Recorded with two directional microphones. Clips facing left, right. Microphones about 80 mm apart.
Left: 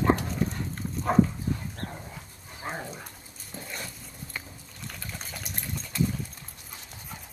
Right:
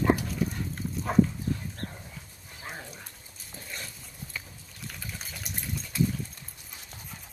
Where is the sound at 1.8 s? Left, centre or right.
Left.